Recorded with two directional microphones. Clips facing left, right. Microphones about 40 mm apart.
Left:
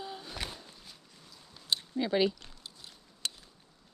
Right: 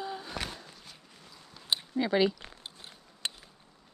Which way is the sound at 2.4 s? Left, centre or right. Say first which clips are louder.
Right 4 dB; right.